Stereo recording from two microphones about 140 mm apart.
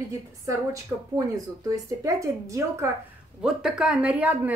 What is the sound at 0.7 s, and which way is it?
Speech, 25° right (ahead or behind).